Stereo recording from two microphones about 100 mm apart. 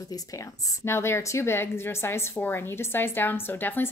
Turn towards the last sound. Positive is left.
turn(degrees=20)  # may be behind; listen again after turning